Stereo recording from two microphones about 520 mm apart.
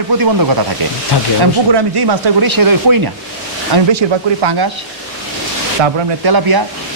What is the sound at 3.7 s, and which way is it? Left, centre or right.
Speech, right.